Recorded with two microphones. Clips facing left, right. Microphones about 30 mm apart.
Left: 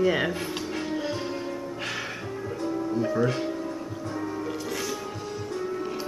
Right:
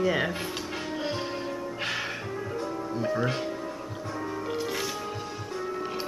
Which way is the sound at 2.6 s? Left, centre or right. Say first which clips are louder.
Left 4 dB; centre.